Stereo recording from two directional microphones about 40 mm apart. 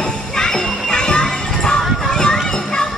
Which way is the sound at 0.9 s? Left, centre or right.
Left.